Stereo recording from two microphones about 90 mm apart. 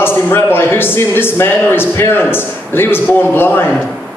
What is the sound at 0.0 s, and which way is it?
A man's voice, 25° left (ahead or behind).